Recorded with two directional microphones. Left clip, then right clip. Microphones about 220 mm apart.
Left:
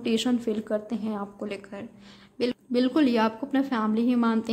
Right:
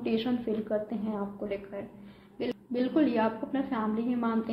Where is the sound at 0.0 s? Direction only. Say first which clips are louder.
Left 4 dB; 35° left (ahead or behind).